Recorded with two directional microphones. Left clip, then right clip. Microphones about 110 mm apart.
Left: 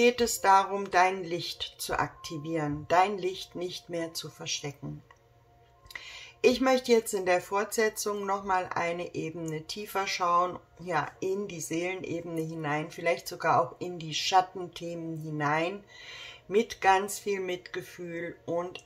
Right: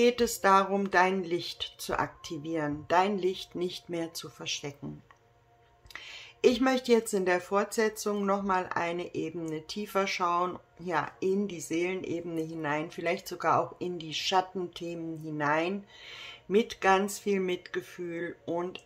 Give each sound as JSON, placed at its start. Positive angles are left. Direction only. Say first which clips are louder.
{"t": 0.0, "sound": "speech", "louder": "left 1 dB", "side_deg": -35}
{"t": 5.9, "sound": "speech", "louder": "even", "side_deg": -35}